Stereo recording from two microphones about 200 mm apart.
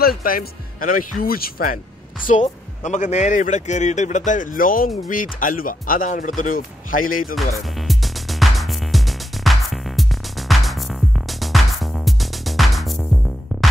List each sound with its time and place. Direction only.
0.0 s speech: 45° left (ahead or behind)
7.7 s music: centre (ahead or behind)